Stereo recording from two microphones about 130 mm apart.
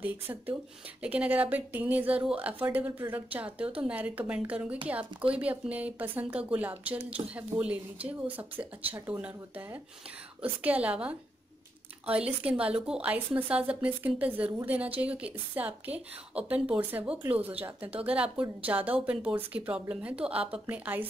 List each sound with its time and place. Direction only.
0.0 s speech: 15° right (ahead or behind)